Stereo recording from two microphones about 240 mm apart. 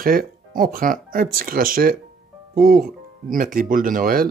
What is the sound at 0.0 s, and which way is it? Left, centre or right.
Speech, right.